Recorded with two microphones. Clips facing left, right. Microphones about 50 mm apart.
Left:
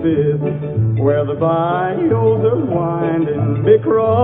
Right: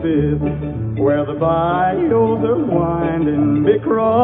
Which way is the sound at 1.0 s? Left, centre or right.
Centre.